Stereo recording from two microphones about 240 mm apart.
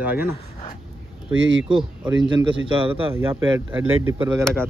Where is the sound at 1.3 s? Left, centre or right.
Right.